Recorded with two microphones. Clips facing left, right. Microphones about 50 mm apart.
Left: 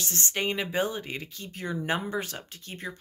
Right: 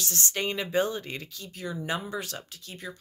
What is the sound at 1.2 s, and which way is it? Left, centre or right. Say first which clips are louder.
Speech: left 2 dB; left.